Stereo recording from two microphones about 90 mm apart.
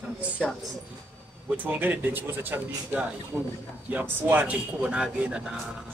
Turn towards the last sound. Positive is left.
turn(degrees=-10)  # may be behind; listen again after turning